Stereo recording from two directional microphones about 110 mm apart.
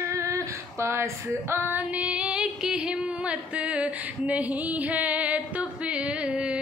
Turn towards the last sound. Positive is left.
turn(degrees=-10)  # may be behind; listen again after turning